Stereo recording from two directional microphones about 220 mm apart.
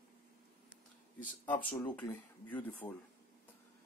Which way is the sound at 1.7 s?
20° left (ahead or behind).